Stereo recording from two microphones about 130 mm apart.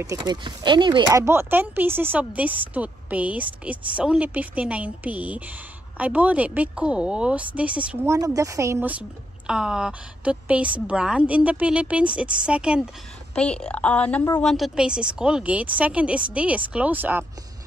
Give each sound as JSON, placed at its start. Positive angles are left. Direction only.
{"t": 0.2, "sound": "speech", "side_deg": -35}
{"t": 1.2, "sound": "speech", "side_deg": -20}
{"t": 8.4, "sound": "speech", "side_deg": -25}
{"t": 9.5, "sound": "speech", "side_deg": -5}
{"t": 13.3, "sound": "speech", "side_deg": 10}